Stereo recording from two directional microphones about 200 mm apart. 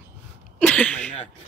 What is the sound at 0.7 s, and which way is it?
Speech, 5° left (ahead or behind).